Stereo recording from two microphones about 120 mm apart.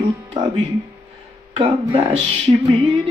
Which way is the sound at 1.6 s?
50° right (ahead or behind).